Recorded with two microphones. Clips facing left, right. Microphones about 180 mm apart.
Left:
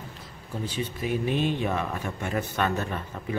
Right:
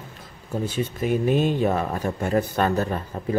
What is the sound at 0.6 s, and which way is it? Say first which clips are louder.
Speech: right 5 dB; 50° right (ahead or behind).